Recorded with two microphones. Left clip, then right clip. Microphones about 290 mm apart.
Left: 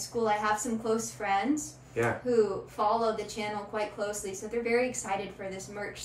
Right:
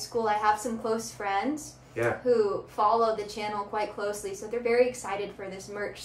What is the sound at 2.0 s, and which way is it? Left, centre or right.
Speech, centre.